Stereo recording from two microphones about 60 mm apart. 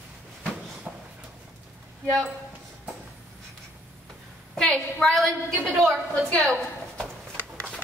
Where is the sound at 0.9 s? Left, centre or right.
Centre.